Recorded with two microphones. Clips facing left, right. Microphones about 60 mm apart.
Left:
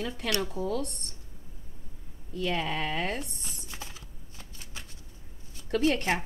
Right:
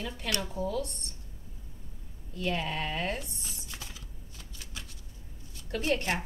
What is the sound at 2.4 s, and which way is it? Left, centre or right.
Speech, left.